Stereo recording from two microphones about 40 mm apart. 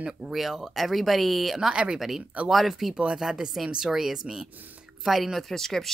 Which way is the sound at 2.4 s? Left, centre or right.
Centre.